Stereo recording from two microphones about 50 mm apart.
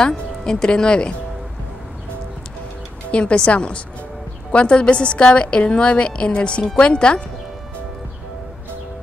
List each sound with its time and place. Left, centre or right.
0.1 s speech: centre
3.1 s a woman's voice: left